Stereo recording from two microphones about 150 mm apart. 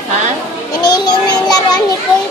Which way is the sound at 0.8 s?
25° left (ahead or behind).